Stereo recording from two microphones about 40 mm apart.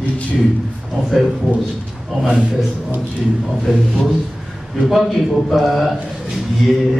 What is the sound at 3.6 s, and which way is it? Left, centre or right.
A man's voice, centre.